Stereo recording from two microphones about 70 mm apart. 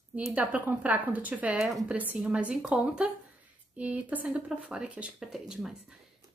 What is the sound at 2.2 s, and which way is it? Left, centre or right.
A woman's voice, centre.